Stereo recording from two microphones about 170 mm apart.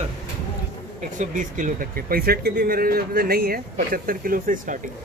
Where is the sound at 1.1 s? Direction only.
50° right (ahead or behind).